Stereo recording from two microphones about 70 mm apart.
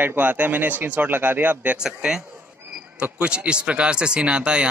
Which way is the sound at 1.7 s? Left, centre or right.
Centre.